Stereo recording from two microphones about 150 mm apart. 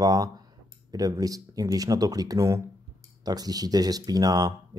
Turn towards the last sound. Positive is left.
turn(degrees=-25)  # may be behind; listen again after turning